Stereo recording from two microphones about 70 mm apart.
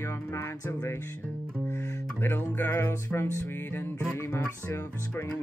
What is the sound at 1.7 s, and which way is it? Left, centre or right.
Guitar, left.